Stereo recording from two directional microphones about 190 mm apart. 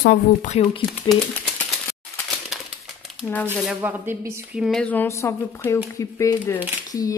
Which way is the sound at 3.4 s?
10° right (ahead or behind).